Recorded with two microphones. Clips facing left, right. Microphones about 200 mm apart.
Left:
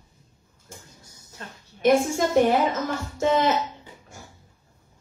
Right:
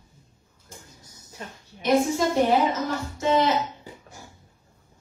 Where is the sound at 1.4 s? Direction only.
15° right (ahead or behind).